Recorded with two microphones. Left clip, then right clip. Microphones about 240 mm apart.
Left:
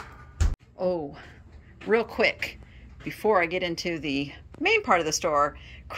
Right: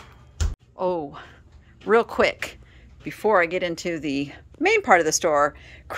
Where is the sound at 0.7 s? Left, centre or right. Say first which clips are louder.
Right 3 dB; centre.